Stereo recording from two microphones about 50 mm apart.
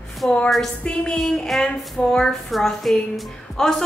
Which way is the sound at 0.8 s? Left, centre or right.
Centre.